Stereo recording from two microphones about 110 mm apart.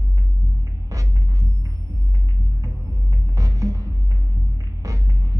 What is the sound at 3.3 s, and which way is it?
Music, 30° right (ahead or behind).